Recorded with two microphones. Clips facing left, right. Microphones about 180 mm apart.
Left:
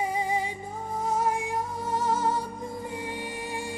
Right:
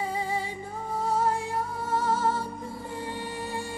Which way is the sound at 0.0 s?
15° left (ahead or behind).